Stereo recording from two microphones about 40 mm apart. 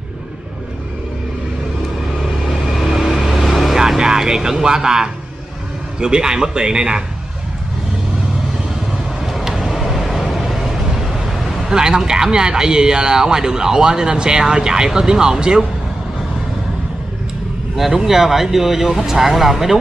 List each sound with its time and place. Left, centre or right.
2.8 s vehicle: centre
3.7 s music: centre
5.9 s a man's voice: right
9.2 s vehicle: centre
11.7 s speech: centre
17.7 s speech: centre